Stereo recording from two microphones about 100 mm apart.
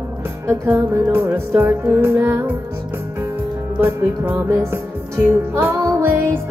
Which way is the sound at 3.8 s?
25° right (ahead or behind).